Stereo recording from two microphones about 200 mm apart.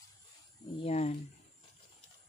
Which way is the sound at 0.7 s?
30° left (ahead or behind).